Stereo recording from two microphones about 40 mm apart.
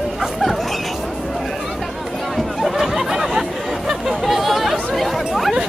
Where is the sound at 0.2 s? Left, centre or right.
Centre.